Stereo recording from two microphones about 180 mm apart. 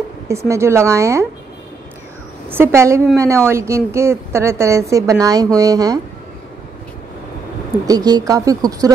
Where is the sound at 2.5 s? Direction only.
15° right (ahead or behind).